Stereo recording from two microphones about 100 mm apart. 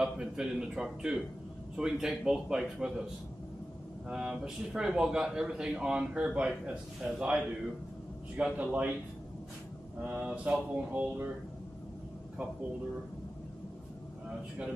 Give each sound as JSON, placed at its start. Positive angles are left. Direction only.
{"t": 0.0, "sound": "a man's voice", "side_deg": -5}
{"t": 4.1, "sound": "a man's voice", "side_deg": -10}
{"t": 8.5, "sound": "a man's voice", "side_deg": -15}
{"t": 10.0, "sound": "a man's voice", "side_deg": -10}